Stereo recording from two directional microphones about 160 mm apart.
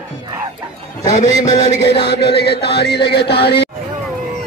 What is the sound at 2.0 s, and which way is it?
Music, 90° left.